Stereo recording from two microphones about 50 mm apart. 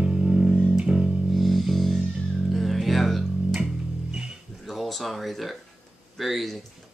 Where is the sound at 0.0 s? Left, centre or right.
Centre.